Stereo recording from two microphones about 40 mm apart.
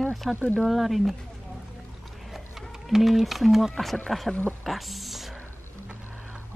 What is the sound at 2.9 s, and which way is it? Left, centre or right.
Speech, centre.